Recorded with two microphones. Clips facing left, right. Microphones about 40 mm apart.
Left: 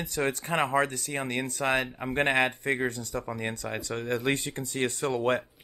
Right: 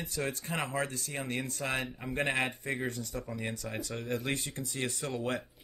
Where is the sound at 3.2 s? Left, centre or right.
Left.